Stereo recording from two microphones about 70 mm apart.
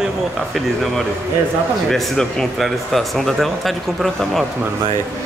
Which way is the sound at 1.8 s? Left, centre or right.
Centre.